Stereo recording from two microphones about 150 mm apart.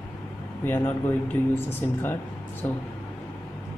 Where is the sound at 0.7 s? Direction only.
15° left (ahead or behind).